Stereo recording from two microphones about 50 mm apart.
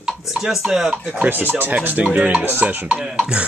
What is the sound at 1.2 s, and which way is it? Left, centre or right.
Speech, right.